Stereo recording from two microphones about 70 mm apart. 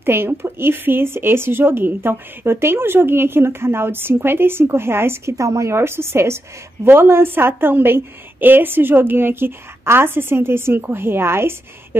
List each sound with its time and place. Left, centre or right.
0.0 s speech: right